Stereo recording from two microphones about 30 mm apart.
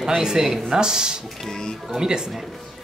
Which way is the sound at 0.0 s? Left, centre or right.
Right.